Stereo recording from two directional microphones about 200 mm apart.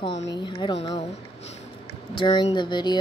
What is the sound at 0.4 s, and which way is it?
Speech, 25° left (ahead or behind).